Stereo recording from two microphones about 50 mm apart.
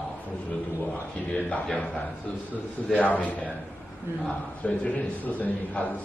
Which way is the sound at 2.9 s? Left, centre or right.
Left.